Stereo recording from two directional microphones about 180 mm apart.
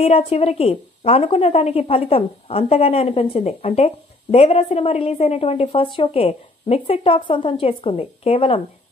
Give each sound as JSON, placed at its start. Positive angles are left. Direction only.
{"t": 0.0, "sound": "a woman's voice", "side_deg": 35}